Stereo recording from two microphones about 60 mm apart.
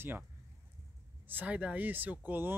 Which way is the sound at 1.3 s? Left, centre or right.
Right.